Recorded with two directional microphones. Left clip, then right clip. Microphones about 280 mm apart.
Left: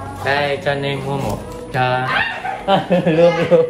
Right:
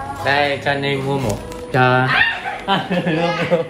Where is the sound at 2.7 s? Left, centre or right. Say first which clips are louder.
Left 4 dB; centre.